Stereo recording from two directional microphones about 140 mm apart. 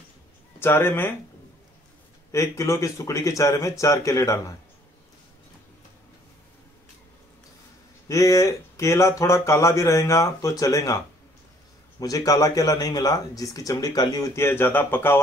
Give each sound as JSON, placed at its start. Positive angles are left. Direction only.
{"t": 0.6, "sound": "speech", "side_deg": 15}
{"t": 2.3, "sound": "a man's voice", "side_deg": 20}
{"t": 8.1, "sound": "a man's voice", "side_deg": 25}
{"t": 12.0, "sound": "a man's voice", "side_deg": 25}